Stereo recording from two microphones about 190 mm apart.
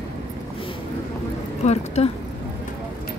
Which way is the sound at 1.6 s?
40° left (ahead or behind).